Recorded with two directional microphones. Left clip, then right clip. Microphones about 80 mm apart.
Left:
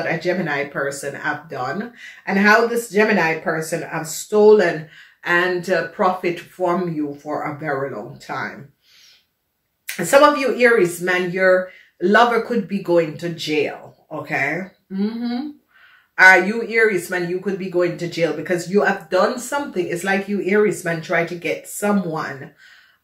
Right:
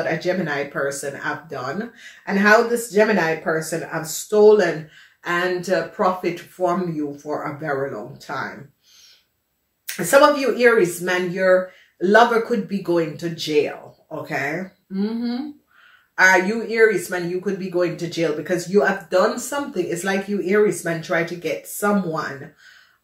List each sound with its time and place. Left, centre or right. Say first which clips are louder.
0.0 s speech: left 1 dB; right
10.1 s speech: left 1 dB; right